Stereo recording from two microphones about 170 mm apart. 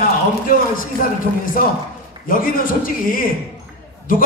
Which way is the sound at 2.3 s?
55° left (ahead or behind).